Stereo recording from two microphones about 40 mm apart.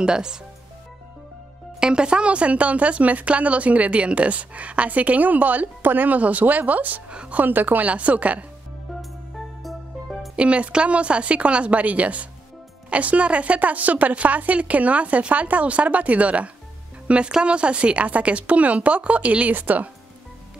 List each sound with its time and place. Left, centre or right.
0.0 s speech: centre
1.8 s speech: right
7.1 s a woman's voice: right
7.3 s a woman's voice: right
7.9 s speech: right
9.6 s music: centre
10.3 s speech: right
17.3 s speech: right
19.5 s a woman's voice: right